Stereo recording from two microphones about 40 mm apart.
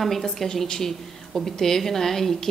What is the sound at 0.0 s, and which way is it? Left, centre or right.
A woman's voice, centre.